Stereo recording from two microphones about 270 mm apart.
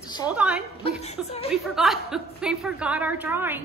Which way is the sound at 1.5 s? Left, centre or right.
Centre.